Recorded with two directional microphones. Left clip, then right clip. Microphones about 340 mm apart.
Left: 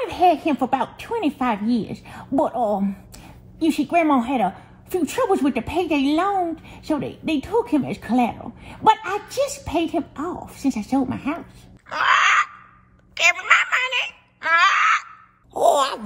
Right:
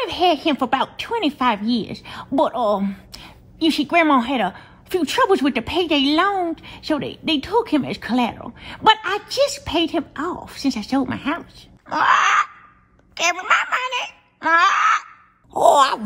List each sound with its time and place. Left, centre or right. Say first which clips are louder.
0.0 s a woman's voice: even; centre
11.9 s wail: right 1 dB; centre
13.1 s a sound: left 2 dB; centre
15.6 s wail: right 4 dB; right